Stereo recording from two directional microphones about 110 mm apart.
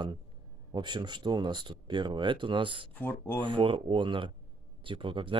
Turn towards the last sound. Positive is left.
turn(degrees=-50)  # may be behind; listen again after turning